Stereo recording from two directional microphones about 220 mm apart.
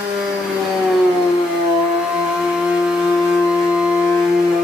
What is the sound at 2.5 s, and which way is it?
Wind instrument, 5° right (ahead or behind).